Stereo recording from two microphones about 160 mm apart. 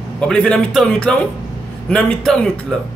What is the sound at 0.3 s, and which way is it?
Speech, 5° left (ahead or behind).